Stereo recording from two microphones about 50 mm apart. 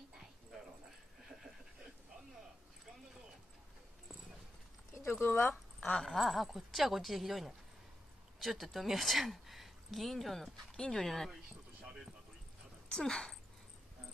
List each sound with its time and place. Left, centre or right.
5.2 s speech: left
5.9 s speech: centre
10.8 s speech: centre
12.8 s speech: centre